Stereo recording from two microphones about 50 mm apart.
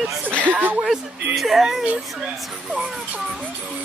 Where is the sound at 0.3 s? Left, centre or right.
Left.